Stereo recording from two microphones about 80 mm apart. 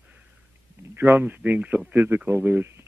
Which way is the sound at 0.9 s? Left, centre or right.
Right.